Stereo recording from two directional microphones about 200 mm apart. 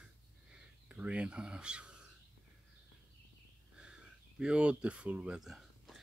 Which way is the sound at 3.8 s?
5° right (ahead or behind).